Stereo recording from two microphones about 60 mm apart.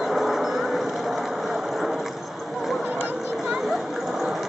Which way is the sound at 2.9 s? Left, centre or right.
Left.